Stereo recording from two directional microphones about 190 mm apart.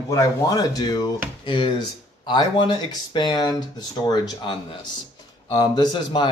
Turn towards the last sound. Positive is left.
turn(degrees=25)  # may be behind; listen again after turning